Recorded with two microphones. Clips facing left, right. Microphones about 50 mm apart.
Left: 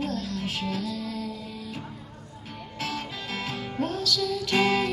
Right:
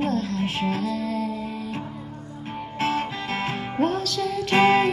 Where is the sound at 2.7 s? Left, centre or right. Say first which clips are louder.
Right 8 dB; right.